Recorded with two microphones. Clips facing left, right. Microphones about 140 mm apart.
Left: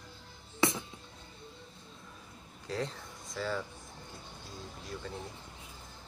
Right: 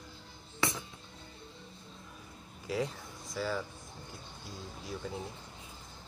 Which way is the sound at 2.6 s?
10° right (ahead or behind).